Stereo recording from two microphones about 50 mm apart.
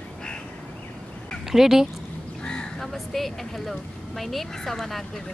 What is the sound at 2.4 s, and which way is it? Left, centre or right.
Crow, centre.